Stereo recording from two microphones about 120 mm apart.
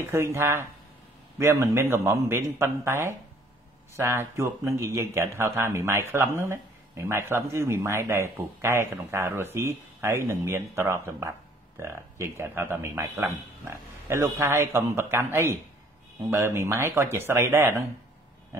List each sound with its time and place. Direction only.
0.0 s speech: 20° right (ahead or behind)